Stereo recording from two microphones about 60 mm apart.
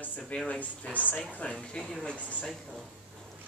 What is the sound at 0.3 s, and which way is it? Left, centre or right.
Speech, centre.